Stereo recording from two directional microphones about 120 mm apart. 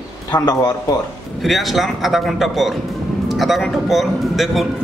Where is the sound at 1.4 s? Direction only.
Centre (ahead or behind).